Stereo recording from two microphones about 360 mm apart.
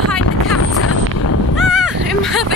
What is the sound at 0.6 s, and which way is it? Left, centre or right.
Vehicle, left.